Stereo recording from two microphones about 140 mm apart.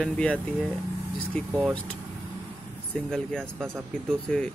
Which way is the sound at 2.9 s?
5° left (ahead or behind).